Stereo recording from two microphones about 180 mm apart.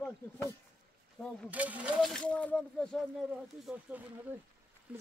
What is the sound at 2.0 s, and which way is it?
Speech, 5° left (ahead or behind).